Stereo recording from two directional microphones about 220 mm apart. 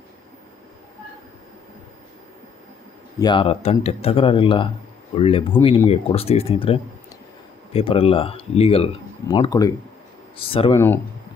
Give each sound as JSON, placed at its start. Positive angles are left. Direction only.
{"t": 3.2, "sound": "speech", "side_deg": 20}